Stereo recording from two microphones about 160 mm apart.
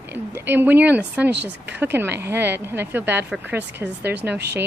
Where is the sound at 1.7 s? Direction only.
15° right (ahead or behind).